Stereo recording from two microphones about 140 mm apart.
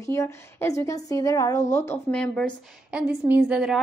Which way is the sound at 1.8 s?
10° left (ahead or behind).